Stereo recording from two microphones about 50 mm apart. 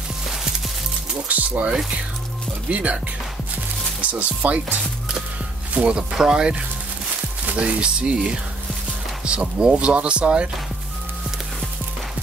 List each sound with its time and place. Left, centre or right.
1.3 s speech: right
4.1 s speech: right
5.8 s speech: right
7.5 s speech: right